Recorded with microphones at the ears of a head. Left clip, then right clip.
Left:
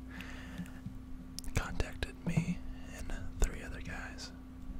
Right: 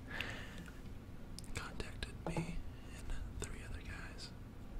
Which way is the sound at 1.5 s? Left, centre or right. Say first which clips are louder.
Left 7 dB; left.